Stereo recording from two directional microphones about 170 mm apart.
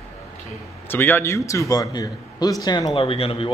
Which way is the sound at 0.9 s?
10° left (ahead or behind).